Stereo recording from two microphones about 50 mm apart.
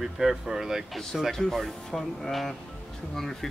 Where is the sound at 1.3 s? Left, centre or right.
Centre.